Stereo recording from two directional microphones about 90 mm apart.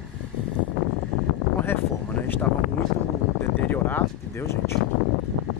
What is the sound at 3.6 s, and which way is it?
Speech, 20° left (ahead or behind).